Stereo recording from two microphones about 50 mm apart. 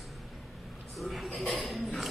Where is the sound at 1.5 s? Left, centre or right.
Centre.